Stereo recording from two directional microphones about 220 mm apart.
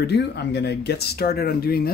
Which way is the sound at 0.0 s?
50° left (ahead or behind).